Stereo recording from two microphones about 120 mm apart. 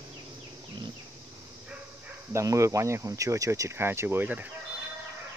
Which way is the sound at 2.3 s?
25° right (ahead or behind).